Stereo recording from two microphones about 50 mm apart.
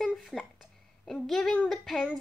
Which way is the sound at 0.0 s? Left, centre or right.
Centre.